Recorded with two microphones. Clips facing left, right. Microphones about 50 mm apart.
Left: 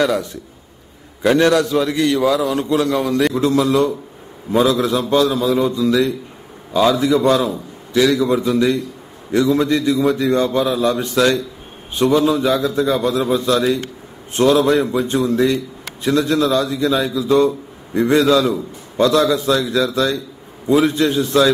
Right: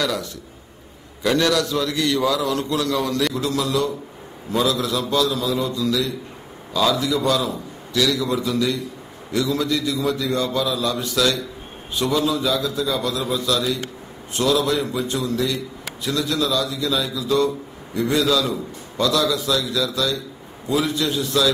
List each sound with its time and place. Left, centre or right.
0.0 s a man's voice: left